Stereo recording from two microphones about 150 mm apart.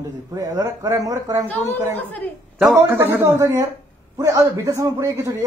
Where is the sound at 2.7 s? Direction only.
15° right (ahead or behind).